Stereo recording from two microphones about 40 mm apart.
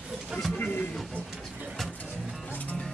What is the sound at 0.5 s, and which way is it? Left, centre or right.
Speech, left.